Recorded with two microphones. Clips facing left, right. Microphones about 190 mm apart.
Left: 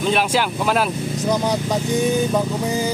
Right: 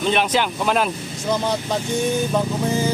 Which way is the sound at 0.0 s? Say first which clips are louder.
Left 1 dB; 5° left (ahead or behind).